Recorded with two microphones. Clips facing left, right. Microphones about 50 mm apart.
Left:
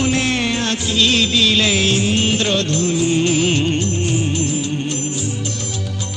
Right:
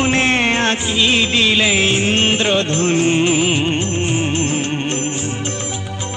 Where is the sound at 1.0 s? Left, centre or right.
Right.